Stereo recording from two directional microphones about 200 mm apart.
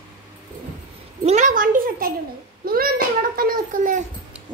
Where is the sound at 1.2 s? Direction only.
40° right (ahead or behind).